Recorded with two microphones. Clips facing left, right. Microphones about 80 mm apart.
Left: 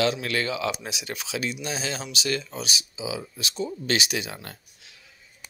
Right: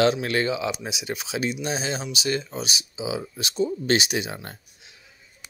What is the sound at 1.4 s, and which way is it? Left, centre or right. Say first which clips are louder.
Speech: right 4 dB; right.